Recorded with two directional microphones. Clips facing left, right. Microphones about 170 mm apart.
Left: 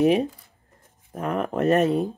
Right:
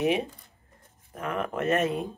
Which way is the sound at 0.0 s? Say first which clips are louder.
Left 6 dB; 40° left (ahead or behind).